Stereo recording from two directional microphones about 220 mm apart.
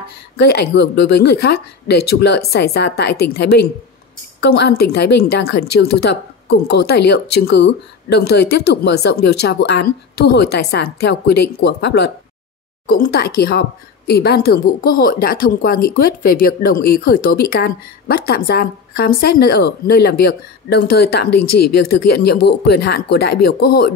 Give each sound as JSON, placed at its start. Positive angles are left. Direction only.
{"t": 0.4, "sound": "speech", "side_deg": 50}